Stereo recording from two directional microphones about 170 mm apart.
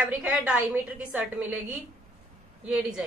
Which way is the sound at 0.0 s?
5° right (ahead or behind).